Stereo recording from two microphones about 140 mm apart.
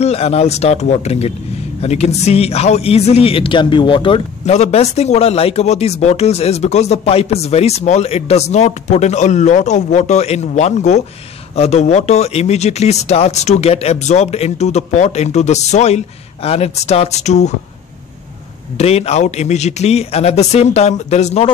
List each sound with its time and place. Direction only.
0.0 s a man's voice: 50° left (ahead or behind)
4.5 s a man's voice: 50° left (ahead or behind)
18.8 s a man's voice: 50° left (ahead or behind)